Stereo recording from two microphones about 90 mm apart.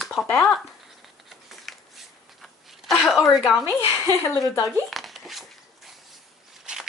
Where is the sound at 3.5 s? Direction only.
15° right (ahead or behind).